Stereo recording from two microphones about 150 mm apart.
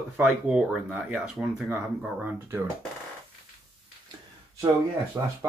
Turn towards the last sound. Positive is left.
turn(degrees=-20)  # may be behind; listen again after turning